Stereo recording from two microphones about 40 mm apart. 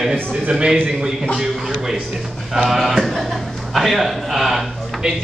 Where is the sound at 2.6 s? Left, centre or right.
Centre.